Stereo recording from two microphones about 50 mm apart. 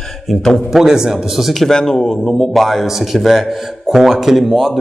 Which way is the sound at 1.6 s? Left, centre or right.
Centre.